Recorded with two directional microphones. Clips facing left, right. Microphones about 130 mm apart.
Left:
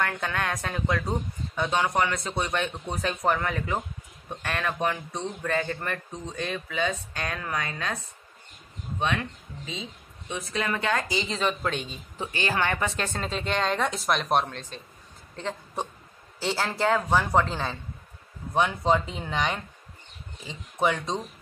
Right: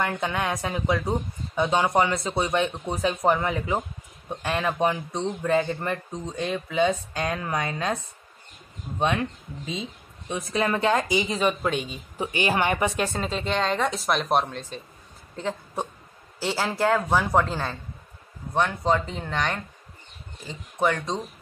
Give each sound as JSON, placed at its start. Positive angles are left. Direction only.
{"t": 0.2, "sound": "speech", "side_deg": -10}
{"t": 1.7, "sound": "speech", "side_deg": -25}
{"t": 10.2, "sound": "speech", "side_deg": -35}
{"t": 11.1, "sound": "speech", "side_deg": -10}
{"t": 13.3, "sound": "speech", "side_deg": 0}